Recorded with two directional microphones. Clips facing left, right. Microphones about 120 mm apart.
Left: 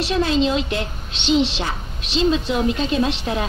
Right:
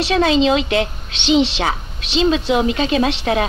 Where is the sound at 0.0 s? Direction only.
90° right.